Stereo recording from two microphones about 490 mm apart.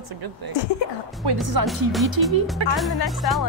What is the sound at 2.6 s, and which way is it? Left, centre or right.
Speech, right.